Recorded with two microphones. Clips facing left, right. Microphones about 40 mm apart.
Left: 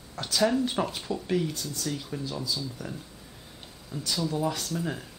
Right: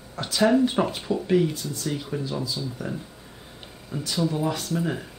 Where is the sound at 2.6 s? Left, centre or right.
Right.